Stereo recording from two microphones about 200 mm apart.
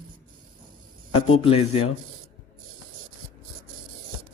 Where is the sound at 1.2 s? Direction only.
30° left (ahead or behind).